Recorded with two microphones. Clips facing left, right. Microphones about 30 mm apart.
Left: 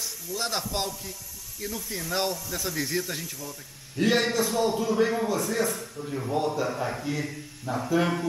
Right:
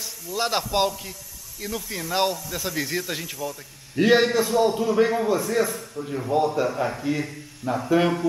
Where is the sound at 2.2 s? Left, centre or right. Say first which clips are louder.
Right 4 dB; right.